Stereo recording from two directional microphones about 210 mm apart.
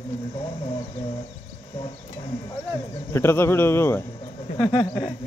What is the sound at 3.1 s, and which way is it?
Speech, 10° left (ahead or behind).